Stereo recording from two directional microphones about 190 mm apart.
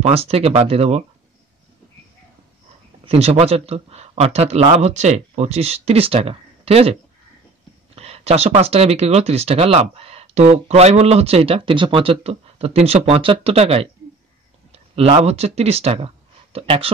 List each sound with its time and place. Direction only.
0.0 s speech: 30° right (ahead or behind)
3.1 s speech: 30° right (ahead or behind)